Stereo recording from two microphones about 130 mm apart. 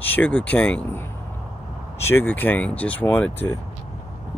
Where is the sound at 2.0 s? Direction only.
15° left (ahead or behind).